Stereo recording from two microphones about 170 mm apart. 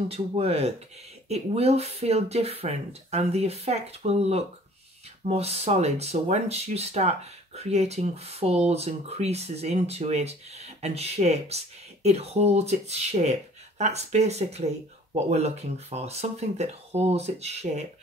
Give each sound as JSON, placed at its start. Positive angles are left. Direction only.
{"t": 0.1, "sound": "speech", "side_deg": -35}